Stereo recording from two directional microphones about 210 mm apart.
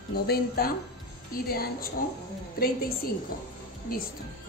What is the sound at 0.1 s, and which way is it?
Speech, 45° left (ahead or behind).